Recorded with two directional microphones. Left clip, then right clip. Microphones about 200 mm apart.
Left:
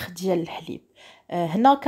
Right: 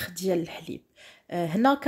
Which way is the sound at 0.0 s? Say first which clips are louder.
Left 2 dB; centre (ahead or behind).